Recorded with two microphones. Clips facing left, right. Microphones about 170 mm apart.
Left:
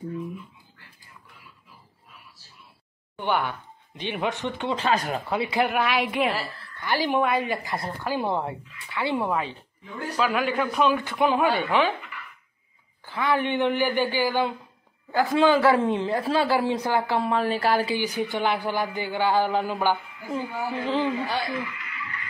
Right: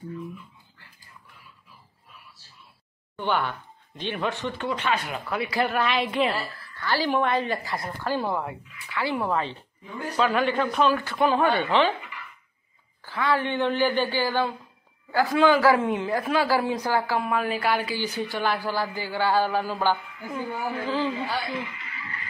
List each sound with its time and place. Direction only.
3.2 s speech: 15° left (ahead or behind)
4.7 s speech: 35° left (ahead or behind)
5.2 s a man's voice: 25° left (ahead or behind)
8.3 s a man's voice: 25° left (ahead or behind); by 12.1 s 5° left (ahead or behind)
13.0 s a man's voice: 20° left (ahead or behind)
17.2 s speech: 35° left (ahead or behind)
17.9 s a man's voice: 15° left (ahead or behind)
21.5 s speech: 25° right (ahead or behind)